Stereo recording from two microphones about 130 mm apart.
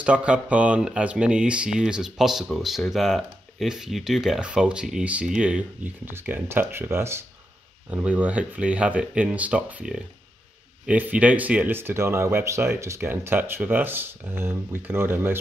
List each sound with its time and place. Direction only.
0.0 s speech: 10° right (ahead or behind)